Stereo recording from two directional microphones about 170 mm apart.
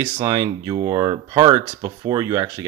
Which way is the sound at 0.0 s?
20° right (ahead or behind).